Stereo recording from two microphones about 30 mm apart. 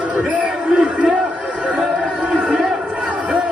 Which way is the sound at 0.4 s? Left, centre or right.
Right.